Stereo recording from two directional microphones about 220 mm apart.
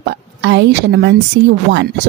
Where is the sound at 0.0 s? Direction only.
50° right (ahead or behind).